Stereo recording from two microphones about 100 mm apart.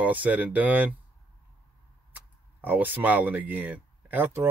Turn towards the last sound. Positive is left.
turn(degrees=-20)  # may be behind; listen again after turning